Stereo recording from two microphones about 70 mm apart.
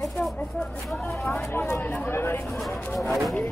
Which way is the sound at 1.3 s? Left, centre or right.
Left.